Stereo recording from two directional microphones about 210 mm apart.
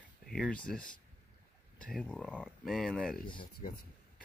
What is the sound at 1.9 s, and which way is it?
Speech, 5° left (ahead or behind).